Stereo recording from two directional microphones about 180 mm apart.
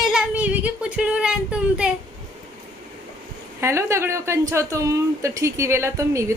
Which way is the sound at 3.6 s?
15° right (ahead or behind).